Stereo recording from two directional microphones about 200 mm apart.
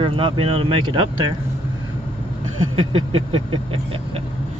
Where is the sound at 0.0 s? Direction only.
25° right (ahead or behind).